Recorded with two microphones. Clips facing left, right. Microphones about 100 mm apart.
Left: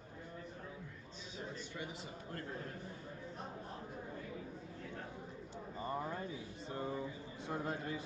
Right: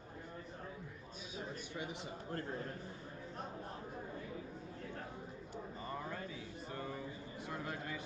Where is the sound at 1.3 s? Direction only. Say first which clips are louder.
Right 1 dB; 15° right (ahead or behind).